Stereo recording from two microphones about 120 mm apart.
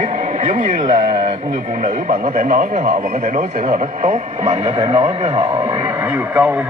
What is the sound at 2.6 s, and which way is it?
Speech, 90° right.